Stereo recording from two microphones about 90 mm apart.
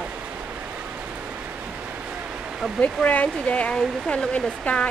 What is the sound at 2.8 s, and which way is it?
Speech, 15° left (ahead or behind).